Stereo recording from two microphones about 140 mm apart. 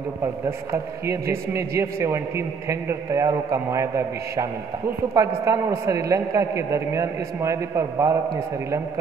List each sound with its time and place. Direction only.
0.5 s a man's voice: 20° right (ahead or behind)